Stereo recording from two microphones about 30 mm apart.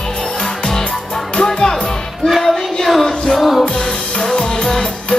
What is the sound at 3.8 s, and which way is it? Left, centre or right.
Music, left.